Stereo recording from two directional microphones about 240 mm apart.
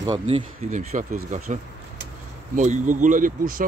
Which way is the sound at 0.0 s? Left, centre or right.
Centre.